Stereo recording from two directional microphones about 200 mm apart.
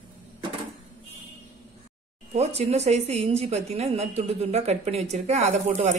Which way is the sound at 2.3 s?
30° right (ahead or behind).